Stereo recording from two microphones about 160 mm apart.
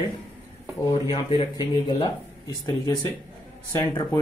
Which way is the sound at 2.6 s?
25° left (ahead or behind).